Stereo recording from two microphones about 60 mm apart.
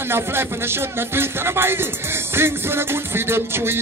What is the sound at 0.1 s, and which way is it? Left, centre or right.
Music, right.